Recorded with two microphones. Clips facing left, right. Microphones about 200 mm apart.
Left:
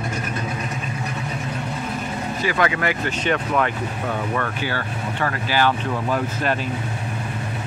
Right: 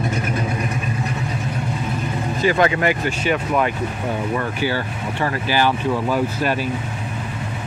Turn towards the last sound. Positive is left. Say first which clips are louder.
# right 3 dB
turn(degrees=-10)  # may be behind; listen again after turning